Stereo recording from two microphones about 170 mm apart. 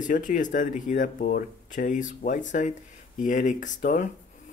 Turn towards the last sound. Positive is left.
turn(degrees=50)  # may be behind; listen again after turning